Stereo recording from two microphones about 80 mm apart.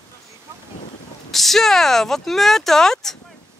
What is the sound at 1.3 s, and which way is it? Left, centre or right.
Speech, centre.